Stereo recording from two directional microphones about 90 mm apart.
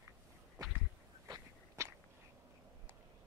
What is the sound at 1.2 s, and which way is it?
Walk, 40° right (ahead or behind).